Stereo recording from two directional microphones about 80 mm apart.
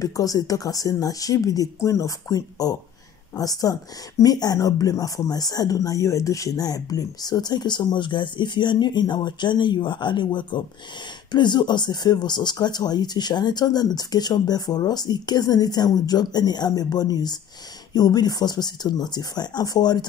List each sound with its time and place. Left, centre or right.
0.0 s speech: left